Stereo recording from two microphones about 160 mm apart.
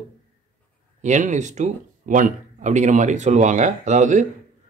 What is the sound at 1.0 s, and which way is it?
Speech, 50° right (ahead or behind).